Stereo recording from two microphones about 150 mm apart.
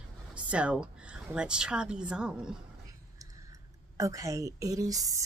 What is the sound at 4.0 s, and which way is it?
A woman's voice, 20° right (ahead or behind).